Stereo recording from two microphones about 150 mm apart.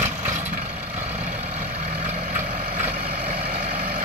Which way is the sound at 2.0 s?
55° right (ahead or behind).